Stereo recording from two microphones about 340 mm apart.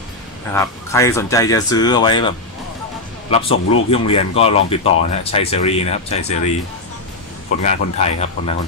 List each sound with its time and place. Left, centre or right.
0.6 s speech: centre
7.6 s speech: centre